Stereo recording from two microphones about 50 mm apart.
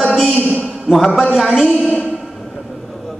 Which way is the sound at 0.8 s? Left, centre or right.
Centre.